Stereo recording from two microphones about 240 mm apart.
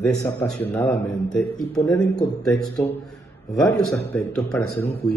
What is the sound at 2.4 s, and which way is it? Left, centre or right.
Speech, centre.